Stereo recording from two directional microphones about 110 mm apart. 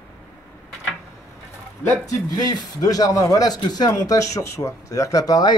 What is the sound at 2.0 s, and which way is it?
A man's voice, 35° left (ahead or behind).